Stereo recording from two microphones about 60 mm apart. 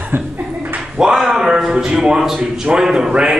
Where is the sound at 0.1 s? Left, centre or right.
Right.